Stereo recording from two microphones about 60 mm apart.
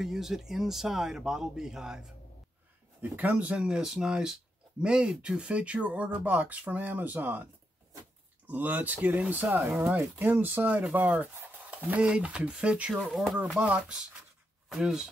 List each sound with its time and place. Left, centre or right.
0.0 s speech: centre
3.0 s speech: right
8.5 s speech: right
13.1 s speech: centre
13.6 s speech: centre
14.7 s speech: centre